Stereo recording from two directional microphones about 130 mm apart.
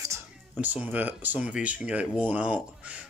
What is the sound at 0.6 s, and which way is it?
Speech, 15° right (ahead or behind).